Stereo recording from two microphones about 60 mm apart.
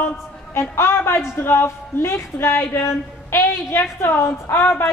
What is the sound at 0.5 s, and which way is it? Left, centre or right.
Speech, left.